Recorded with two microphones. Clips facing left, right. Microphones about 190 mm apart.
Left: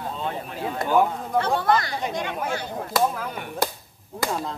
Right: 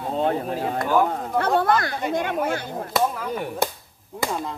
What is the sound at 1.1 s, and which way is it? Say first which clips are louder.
Speech: right 2 dB; 55° right (ahead or behind).